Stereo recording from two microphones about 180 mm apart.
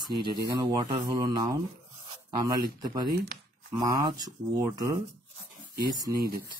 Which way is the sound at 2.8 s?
20° right (ahead or behind).